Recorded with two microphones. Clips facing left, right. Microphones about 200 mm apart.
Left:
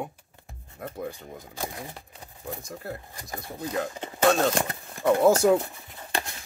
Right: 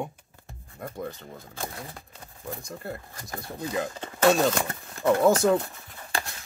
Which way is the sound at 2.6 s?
5° left (ahead or behind).